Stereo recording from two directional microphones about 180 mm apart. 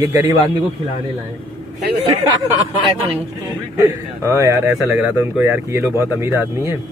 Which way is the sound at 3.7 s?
15° right (ahead or behind).